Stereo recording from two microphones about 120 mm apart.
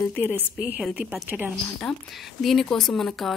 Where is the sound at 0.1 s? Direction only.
15° left (ahead or behind).